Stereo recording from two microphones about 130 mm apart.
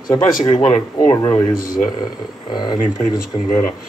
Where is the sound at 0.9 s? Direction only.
25° left (ahead or behind).